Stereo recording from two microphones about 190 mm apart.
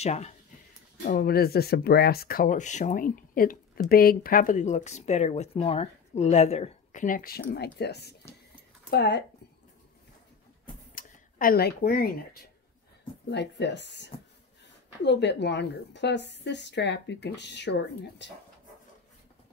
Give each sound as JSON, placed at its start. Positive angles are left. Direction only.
{"t": 0.0, "sound": "speech", "side_deg": 35}
{"t": 1.0, "sound": "a woman's voice", "side_deg": 50}
{"t": 11.0, "sound": "speech", "side_deg": 45}
{"t": 13.3, "sound": "a woman's voice", "side_deg": 65}